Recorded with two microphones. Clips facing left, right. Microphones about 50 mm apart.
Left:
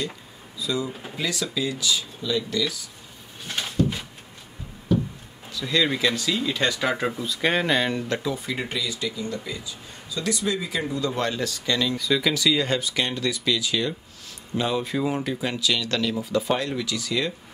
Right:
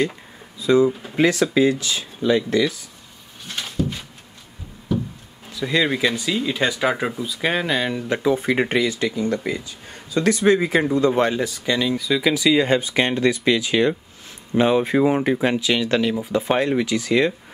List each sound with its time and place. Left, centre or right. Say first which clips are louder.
0.6 s a man's voice: right 11 dB; right
3.4 s a sound: even; centre
5.5 s speech: right 3 dB; right; by 8.1 s centre
8.2 s speech: right 9 dB; right
8.5 s a man's voice: right 9 dB; right